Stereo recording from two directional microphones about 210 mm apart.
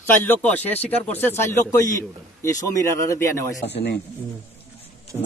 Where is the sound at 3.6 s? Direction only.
55° left (ahead or behind).